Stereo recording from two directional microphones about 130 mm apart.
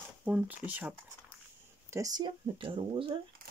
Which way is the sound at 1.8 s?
25° right (ahead or behind).